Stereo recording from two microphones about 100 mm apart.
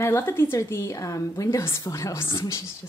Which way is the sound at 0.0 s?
25° left (ahead or behind).